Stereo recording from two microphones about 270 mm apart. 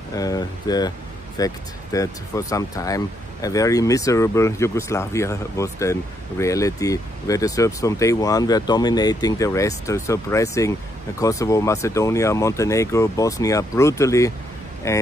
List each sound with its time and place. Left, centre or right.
0.1 s speech: centre